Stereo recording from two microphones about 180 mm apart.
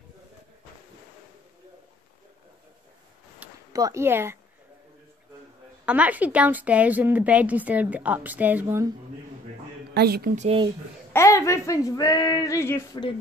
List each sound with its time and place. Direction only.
3.4 s a sound: 10° right (ahead or behind)
3.7 s a woman's voice: 15° right (ahead or behind)
5.9 s a woman's voice: 5° right (ahead or behind)
9.9 s speech: 60° right (ahead or behind)
10.3 s speech: 40° right (ahead or behind)
11.1 s speech: 15° left (ahead or behind)